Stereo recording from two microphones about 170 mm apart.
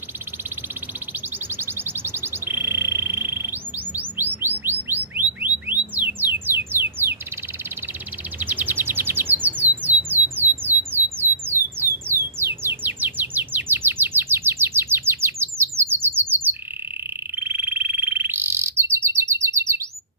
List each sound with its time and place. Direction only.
1.6 s alarm: 15° right (ahead or behind)
4.4 s chirp: 10° right (ahead or behind)
4.8 s music: 10° right (ahead or behind)
8.4 s bird: 10° right (ahead or behind)
9.4 s squawk: 10° right (ahead or behind)
10.9 s a sound: 10° right (ahead or behind)
15.8 s bird: 15° right (ahead or behind)